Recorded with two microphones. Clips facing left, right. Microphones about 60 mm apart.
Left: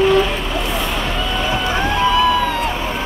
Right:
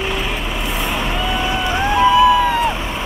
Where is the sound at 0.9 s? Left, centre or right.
Centre.